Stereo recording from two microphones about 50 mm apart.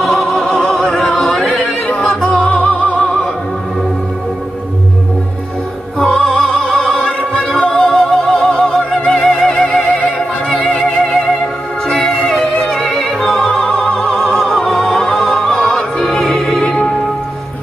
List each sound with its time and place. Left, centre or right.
0.0 s opera: centre
0.7 s opera: centre
1.3 s music: centre
1.6 s opera: left
5.9 s opera: centre
7.7 s music: centre
9.7 s music: left
12.6 s opera: centre
14.3 s music: centre
14.9 s opera: centre